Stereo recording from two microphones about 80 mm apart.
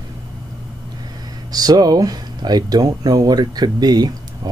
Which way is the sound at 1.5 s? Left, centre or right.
Right.